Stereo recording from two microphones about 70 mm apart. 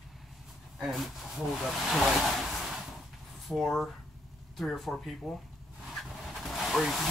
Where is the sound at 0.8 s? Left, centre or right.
Centre.